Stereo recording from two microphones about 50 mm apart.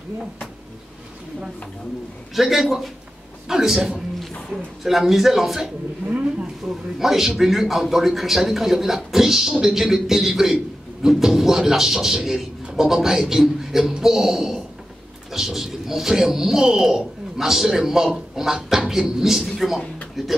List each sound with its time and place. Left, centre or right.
2.3 s a man's voice: centre
6.0 s speech: right
7.0 s a man's voice: centre